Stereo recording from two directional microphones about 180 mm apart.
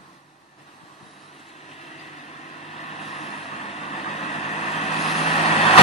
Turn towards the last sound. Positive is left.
turn(degrees=35)  # may be behind; listen again after turning